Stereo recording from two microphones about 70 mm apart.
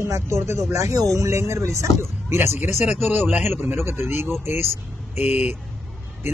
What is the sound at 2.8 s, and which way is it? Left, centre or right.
Speech, right.